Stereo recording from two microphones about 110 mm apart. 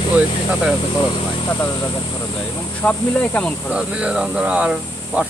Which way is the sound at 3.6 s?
10° right (ahead or behind).